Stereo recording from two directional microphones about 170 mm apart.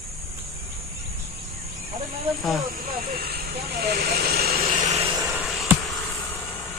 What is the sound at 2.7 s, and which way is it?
Snake, 60° right (ahead or behind).